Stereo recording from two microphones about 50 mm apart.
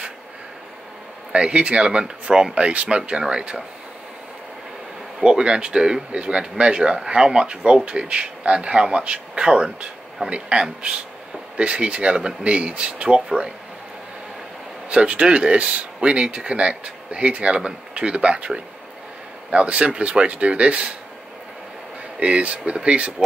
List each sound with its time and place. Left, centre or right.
1.3 s speech: right
5.2 s speech: centre
14.9 s speech: right
22.2 s speech: right